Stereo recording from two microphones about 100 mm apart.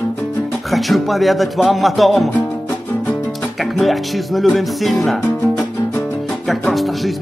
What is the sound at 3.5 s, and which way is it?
Speech, centre (ahead or behind).